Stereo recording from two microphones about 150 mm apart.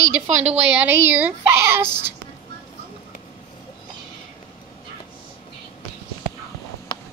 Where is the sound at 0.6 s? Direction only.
10° right (ahead or behind).